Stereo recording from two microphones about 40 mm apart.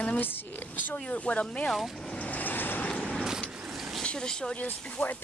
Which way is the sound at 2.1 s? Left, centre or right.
Left.